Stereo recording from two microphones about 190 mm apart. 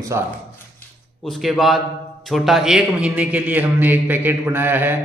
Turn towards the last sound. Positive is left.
turn(degrees=-10)  # may be behind; listen again after turning